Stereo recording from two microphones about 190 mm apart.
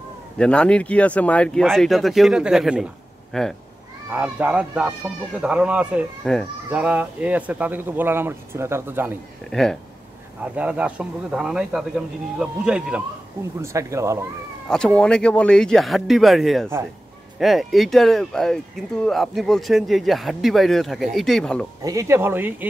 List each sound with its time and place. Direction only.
0.4 s speech: 5° left (ahead or behind)
6.7 s speech: 5° right (ahead or behind)
9.5 s speech: centre (ahead or behind)
13.6 s speech: 15° right (ahead or behind)
14.7 s speech: 5° left (ahead or behind)
21.8 s speech: 15° right (ahead or behind)